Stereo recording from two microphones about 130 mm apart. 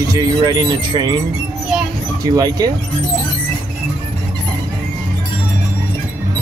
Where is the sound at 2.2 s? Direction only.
30° right (ahead or behind).